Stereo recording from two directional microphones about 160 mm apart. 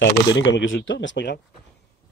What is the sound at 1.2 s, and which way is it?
Speech, 90° left.